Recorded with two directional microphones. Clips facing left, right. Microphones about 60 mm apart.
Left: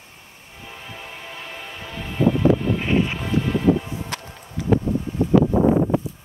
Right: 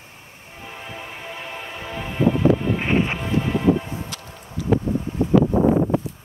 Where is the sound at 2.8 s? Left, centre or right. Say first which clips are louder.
Even; right.